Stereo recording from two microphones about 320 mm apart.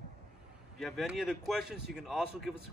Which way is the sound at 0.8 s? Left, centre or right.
Centre.